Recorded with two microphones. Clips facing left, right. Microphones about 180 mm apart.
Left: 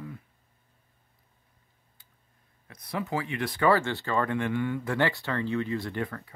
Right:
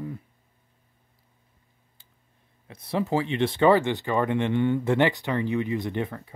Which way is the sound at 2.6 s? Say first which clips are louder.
Right 6 dB; 25° right (ahead or behind).